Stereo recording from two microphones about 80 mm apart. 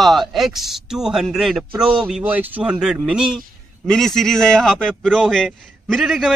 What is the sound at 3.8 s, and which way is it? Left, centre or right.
A man's voice, centre.